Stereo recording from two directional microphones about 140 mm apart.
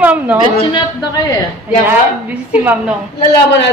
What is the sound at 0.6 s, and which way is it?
Speech, 35° left (ahead or behind).